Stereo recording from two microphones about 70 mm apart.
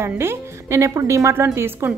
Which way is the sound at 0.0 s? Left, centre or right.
Right.